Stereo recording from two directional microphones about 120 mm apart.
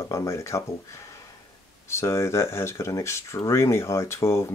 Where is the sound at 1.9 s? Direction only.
25° left (ahead or behind).